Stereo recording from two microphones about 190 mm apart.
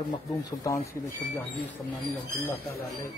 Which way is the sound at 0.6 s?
15° left (ahead or behind).